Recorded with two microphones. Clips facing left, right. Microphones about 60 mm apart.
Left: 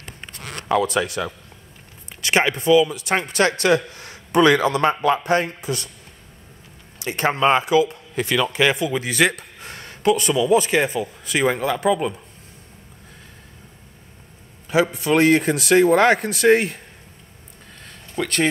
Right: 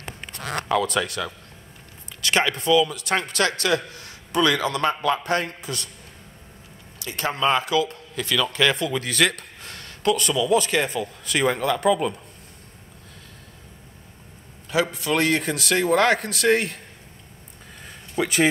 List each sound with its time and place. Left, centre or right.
0.7 s a man's voice: centre
2.2 s a man's voice: centre
7.2 s a man's voice: left; by 12.2 s centre
14.7 s a man's voice: centre
17.7 s a sound: centre